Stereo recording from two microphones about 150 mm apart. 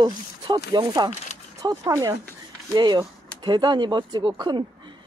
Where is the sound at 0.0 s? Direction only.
30° right (ahead or behind).